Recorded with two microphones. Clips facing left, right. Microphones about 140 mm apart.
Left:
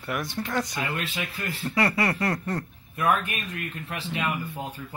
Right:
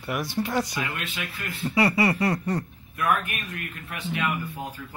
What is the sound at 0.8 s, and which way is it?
Speech, 35° left (ahead or behind).